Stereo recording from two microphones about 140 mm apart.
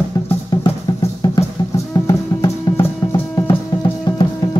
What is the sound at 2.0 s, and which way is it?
Music, 20° left (ahead or behind).